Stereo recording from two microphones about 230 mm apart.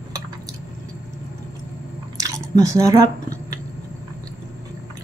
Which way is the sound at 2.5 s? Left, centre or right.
Centre.